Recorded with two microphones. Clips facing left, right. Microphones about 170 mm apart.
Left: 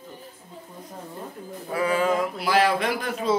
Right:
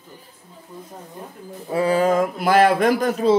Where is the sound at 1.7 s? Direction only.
30° right (ahead or behind).